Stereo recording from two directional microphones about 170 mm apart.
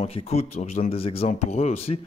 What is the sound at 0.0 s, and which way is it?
Speech, 35° left (ahead or behind).